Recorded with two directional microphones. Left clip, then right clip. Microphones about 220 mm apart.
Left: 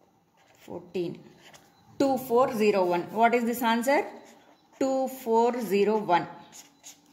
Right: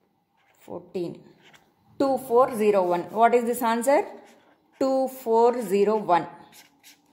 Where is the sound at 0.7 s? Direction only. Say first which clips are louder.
Right 1 dB; 10° right (ahead or behind).